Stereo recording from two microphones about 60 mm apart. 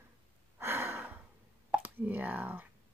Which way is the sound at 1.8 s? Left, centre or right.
Right.